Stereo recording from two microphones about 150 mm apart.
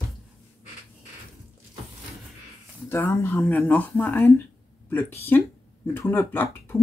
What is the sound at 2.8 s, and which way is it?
Speech, 15° left (ahead or behind).